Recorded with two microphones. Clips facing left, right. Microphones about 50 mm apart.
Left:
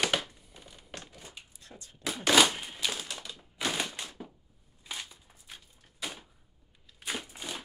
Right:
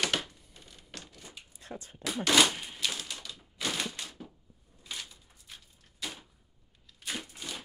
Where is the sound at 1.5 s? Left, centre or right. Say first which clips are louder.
Right 8 dB; right.